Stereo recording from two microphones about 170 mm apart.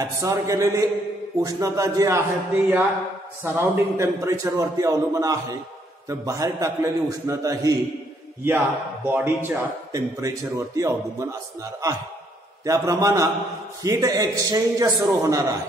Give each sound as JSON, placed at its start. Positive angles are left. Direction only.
{"t": 0.0, "sound": "a man's voice", "side_deg": -20}
{"t": 12.6, "sound": "a man's voice", "side_deg": -20}